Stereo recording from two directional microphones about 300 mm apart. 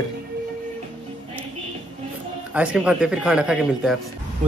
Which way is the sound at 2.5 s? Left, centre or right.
Centre.